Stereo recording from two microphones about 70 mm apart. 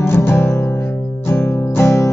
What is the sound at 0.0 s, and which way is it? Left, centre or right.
Music, left.